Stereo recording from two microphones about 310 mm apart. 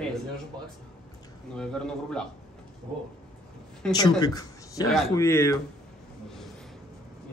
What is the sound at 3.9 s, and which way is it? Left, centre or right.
Speech, centre.